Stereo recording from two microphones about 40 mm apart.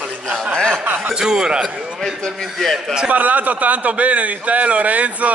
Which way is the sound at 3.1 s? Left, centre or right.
Right.